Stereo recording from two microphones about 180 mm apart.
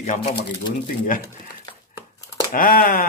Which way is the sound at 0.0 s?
45° left (ahead or behind).